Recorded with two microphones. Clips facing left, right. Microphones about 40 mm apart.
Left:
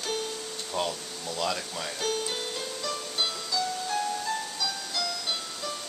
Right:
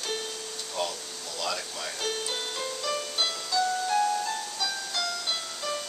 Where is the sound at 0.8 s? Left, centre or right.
Centre.